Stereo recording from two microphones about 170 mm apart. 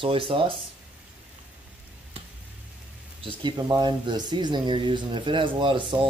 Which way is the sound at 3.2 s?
25° right (ahead or behind).